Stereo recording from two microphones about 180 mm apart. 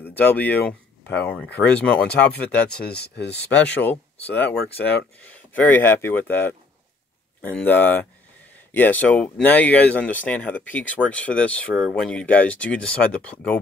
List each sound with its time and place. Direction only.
0.0 s speech: 10° left (ahead or behind)
2.9 s speech: 65° left (ahead or behind)
3.5 s speech: 5° left (ahead or behind)
7.6 s speech: 10° left (ahead or behind)